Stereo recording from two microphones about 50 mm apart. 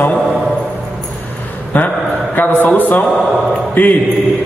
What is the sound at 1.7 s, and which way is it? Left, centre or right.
A man's voice, left.